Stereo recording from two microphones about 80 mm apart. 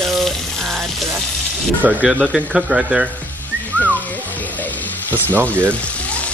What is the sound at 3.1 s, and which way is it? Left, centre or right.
Music, centre.